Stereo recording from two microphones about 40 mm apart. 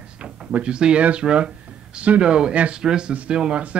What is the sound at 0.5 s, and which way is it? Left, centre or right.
Speech, right.